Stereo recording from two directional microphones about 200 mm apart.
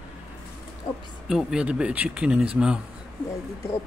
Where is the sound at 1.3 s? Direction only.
Centre (ahead or behind).